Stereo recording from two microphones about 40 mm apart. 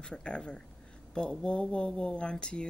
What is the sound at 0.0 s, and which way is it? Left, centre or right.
Speech, left.